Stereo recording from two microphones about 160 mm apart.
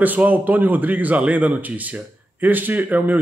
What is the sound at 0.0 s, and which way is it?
Speech, 10° right (ahead or behind).